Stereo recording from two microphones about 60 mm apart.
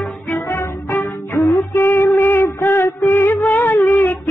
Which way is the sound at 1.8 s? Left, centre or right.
Left.